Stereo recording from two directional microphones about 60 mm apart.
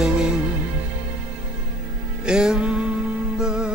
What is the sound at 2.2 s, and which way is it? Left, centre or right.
Music, centre.